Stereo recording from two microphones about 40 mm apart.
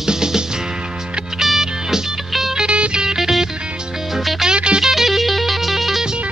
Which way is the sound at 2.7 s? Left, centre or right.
Right.